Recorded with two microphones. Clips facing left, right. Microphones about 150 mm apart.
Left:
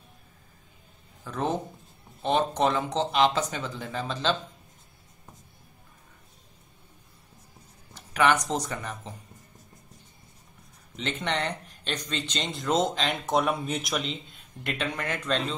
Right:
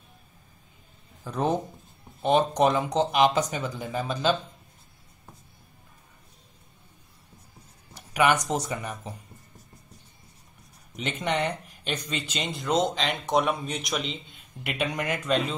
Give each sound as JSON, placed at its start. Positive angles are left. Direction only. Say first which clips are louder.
{"t": 1.2, "sound": "speech", "louder": "right 3 dB", "side_deg": -15}
{"t": 7.9, "sound": "a sound", "louder": "right 1 dB", "side_deg": -10}
{"t": 8.5, "sound": "speech", "louder": "right 1 dB", "side_deg": -10}
{"t": 11.0, "sound": "speech", "louder": "right 2 dB", "side_deg": -10}